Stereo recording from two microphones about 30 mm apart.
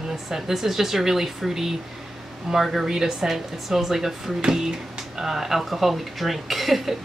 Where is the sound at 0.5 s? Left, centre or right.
Centre.